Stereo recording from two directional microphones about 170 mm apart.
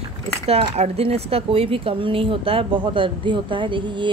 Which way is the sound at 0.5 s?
35° right (ahead or behind).